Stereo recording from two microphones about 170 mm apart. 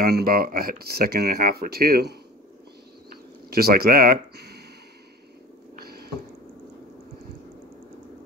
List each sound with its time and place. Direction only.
0.0 s speech: 65° right (ahead or behind)
3.4 s speech: 65° right (ahead or behind)
5.8 s a sound: 65° right (ahead or behind)